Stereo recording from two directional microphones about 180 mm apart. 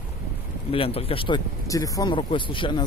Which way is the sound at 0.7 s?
30° left (ahead or behind).